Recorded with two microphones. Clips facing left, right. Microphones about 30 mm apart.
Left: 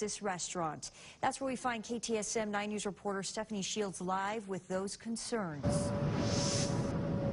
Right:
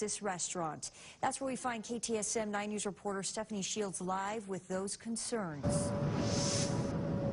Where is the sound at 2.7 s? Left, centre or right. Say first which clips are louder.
Left 1 dB; centre.